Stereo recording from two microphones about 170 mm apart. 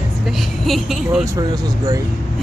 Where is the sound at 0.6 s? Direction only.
Centre (ahead or behind).